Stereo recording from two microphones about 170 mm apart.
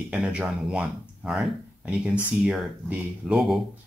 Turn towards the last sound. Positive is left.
turn(degrees=0)  # may be behind; listen again after turning